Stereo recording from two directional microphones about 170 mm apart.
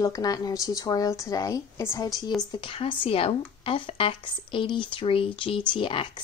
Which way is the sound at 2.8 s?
30° left (ahead or behind).